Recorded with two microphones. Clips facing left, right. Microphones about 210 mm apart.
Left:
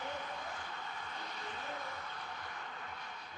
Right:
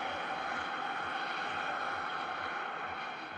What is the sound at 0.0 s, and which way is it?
Vehicle, 65° right (ahead or behind).